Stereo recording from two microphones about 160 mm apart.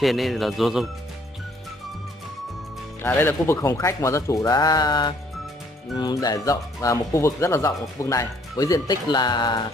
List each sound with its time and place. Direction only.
0.0 s speech: centre (ahead or behind)
3.0 s speech: 15° left (ahead or behind)